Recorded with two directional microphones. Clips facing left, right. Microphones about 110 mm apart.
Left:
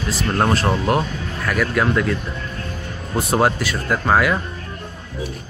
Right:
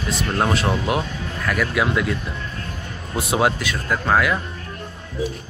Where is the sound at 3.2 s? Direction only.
Centre (ahead or behind).